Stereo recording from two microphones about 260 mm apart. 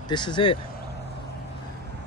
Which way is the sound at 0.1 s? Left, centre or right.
Centre.